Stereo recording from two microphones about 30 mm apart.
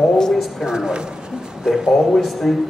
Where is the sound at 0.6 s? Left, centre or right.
Right.